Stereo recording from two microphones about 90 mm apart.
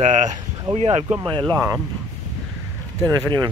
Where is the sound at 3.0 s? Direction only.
50° right (ahead or behind).